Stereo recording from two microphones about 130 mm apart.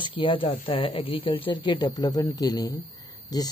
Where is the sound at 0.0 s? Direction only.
45° left (ahead or behind).